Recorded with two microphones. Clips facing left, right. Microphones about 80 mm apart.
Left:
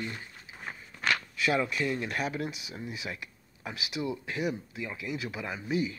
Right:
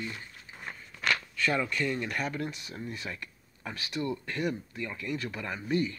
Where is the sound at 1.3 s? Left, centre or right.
Centre.